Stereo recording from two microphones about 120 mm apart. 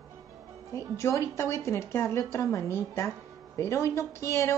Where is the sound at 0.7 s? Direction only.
25° left (ahead or behind).